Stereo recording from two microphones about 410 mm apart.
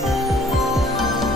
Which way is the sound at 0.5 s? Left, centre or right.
Centre.